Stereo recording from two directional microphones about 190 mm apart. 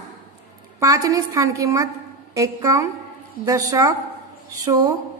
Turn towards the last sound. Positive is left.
turn(degrees=-20)  # may be behind; listen again after turning